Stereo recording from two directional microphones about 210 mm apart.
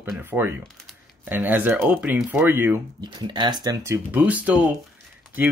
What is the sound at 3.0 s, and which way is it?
Speech, 20° right (ahead or behind).